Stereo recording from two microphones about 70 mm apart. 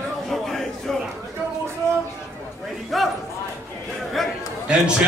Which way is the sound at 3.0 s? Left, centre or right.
Centre.